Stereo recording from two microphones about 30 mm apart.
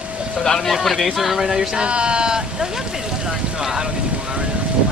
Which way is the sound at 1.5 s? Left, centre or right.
Right.